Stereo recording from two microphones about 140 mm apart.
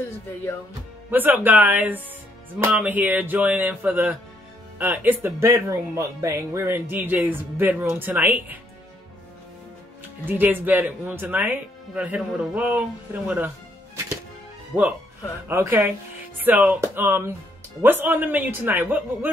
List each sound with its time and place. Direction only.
1.1 s speech: 15° right (ahead or behind)
10.2 s speech: 15° right (ahead or behind)
14.7 s speech: 5° right (ahead or behind)
15.4 s speech: 15° right (ahead or behind)